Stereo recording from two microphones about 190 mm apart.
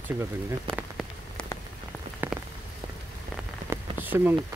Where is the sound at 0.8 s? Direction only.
Centre (ahead or behind).